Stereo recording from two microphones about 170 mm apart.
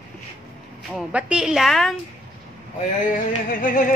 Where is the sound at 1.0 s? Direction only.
5° right (ahead or behind).